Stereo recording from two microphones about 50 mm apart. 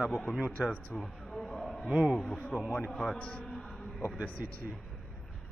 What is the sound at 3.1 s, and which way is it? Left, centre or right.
Speech, left.